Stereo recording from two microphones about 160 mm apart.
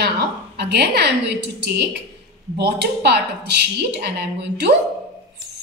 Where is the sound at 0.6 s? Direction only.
90° right.